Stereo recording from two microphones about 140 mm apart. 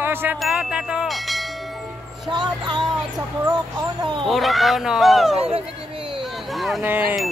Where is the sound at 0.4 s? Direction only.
5° right (ahead or behind).